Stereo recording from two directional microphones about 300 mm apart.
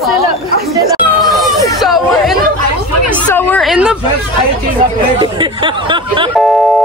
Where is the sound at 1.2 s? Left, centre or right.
Centre.